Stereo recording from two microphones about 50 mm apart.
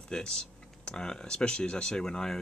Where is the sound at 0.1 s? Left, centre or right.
Centre.